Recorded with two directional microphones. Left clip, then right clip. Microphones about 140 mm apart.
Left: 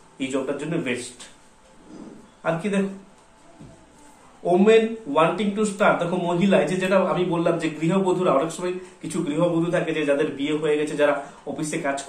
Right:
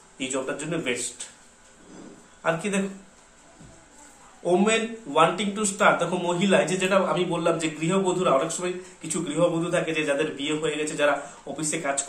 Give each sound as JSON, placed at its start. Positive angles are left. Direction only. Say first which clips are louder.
{"t": 0.2, "sound": "speech", "louder": "left 3 dB", "side_deg": -10}
{"t": 2.4, "sound": "speech", "louder": "left 1 dB", "side_deg": -15}
{"t": 4.5, "sound": "speech", "louder": "left 6 dB", "side_deg": -20}